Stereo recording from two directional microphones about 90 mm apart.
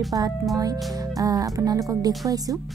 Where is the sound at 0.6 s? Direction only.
45° right (ahead or behind).